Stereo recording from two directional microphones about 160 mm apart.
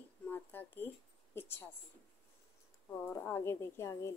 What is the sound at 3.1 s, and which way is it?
Speech, 15° left (ahead or behind).